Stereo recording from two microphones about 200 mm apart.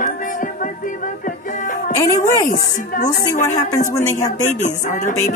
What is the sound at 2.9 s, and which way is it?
A woman's voice, 40° left (ahead or behind).